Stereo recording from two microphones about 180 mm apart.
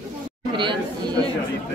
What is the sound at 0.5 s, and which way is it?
Chatter, 25° right (ahead or behind).